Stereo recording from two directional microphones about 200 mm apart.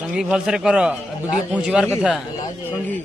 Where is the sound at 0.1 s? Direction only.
5° right (ahead or behind).